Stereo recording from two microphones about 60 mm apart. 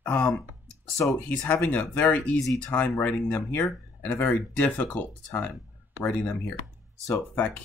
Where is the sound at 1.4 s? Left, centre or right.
Left.